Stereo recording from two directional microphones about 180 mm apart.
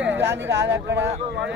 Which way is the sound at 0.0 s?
90° right.